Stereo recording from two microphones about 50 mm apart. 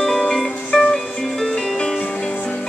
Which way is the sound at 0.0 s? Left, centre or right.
Centre.